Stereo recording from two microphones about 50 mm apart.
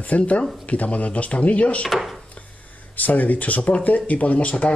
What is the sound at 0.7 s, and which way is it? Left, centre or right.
Speech, left.